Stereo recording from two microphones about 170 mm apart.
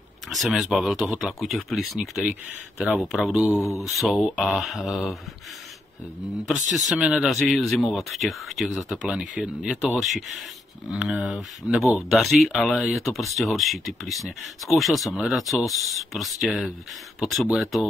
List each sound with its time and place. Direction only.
0.3 s speech: centre (ahead or behind)
3.5 s speech: 15° left (ahead or behind)
3.8 s speech: centre (ahead or behind)
6.9 s speech: 5° right (ahead or behind)